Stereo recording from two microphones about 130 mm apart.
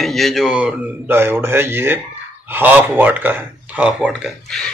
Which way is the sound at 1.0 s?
15° right (ahead or behind).